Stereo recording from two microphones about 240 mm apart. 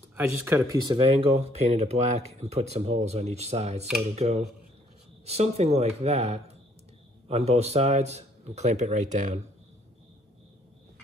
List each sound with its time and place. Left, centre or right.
0.1 s speech: centre; by 9.4 s right